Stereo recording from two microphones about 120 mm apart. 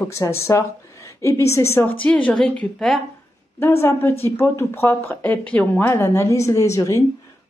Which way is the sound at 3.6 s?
20° left (ahead or behind).